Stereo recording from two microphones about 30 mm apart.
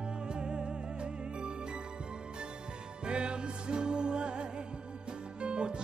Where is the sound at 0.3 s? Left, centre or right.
Right.